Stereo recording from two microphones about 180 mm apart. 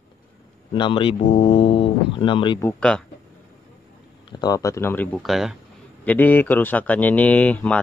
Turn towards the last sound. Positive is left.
turn(degrees=10)  # may be behind; listen again after turning